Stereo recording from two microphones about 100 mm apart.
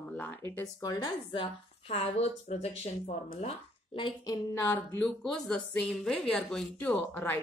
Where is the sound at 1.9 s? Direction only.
90° left.